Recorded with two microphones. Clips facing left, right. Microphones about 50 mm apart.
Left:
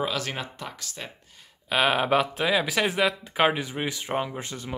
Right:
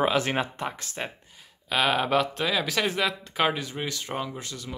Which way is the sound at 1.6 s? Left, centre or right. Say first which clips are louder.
Left 2 dB; centre.